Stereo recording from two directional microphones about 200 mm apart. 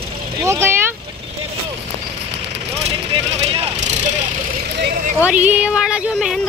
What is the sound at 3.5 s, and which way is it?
Vehicle, 30° right (ahead or behind).